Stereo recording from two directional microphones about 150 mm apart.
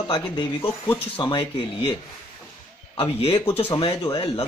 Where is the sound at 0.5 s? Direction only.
15° left (ahead or behind).